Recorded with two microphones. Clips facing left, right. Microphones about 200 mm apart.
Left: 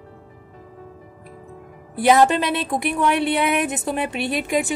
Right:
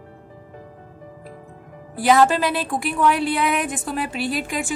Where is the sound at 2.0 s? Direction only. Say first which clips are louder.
Left 1 dB; 20° left (ahead or behind).